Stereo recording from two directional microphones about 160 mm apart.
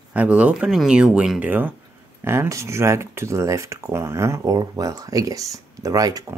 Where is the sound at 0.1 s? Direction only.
10° right (ahead or behind).